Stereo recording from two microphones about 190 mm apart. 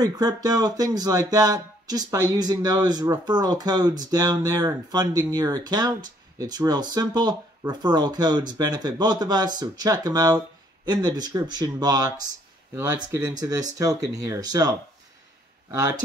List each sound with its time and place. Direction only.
0.0 s speech: 20° right (ahead or behind)